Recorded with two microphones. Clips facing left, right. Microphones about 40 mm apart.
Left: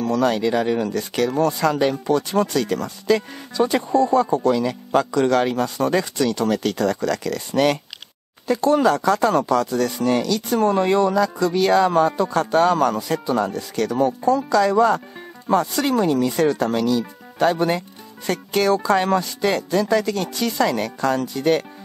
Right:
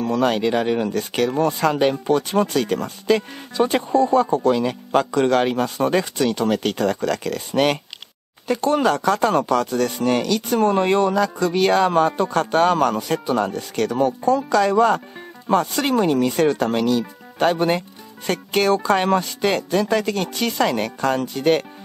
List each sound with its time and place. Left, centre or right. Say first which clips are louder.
0.0 s speech: even; right
3.9 s speech: right 1 dB; centre; by 21.6 s right